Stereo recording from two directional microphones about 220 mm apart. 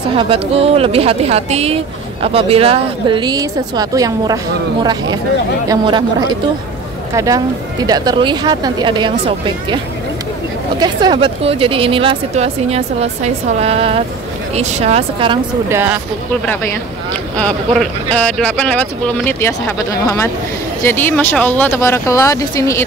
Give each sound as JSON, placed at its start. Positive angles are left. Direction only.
{"t": 0.2, "sound": "speech", "side_deg": -25}
{"t": 10.8, "sound": "speech", "side_deg": -20}
{"t": 15.7, "sound": "speech", "side_deg": -10}
{"t": 17.1, "sound": "speech", "side_deg": 5}